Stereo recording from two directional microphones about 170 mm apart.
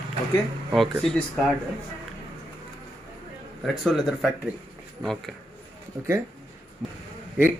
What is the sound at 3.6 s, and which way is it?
A man's voice, centre (ahead or behind).